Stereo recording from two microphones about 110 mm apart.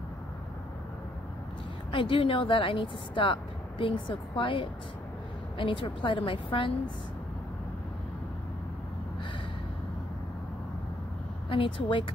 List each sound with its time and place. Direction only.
1.9 s speech: 50° left (ahead or behind)
11.4 s speech: 50° left (ahead or behind)